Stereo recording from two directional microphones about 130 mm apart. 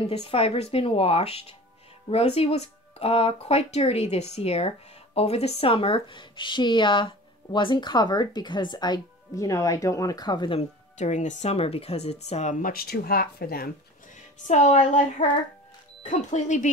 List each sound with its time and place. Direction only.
0.0 s speech: 50° left (ahead or behind); by 10.6 s 35° left (ahead or behind)
11.0 s speech: 70° left (ahead or behind)
14.0 s speech: 65° left (ahead or behind)